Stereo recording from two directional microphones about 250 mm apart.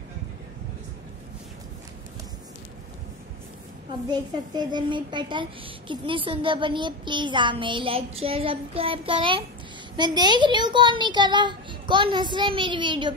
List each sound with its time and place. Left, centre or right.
4.1 s a woman's voice: centre